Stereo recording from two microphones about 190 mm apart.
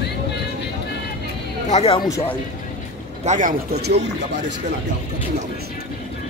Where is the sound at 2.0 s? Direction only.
15° left (ahead or behind).